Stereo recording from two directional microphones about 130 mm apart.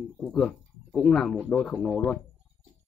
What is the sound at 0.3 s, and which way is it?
Speech, 5° left (ahead or behind).